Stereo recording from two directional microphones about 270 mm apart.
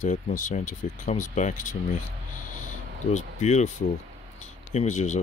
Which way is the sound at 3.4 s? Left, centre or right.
Left.